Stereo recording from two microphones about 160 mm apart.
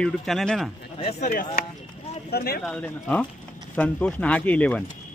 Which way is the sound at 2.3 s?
75° left (ahead or behind).